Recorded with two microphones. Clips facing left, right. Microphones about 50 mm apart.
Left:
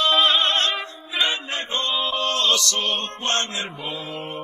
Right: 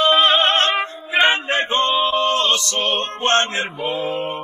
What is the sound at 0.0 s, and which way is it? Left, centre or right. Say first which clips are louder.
Music: right 4 dB; right.